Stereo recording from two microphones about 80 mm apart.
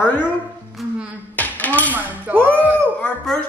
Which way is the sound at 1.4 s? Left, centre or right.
Left.